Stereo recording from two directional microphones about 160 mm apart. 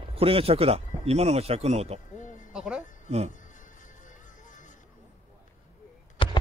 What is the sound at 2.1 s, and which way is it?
Music, 50° left (ahead or behind).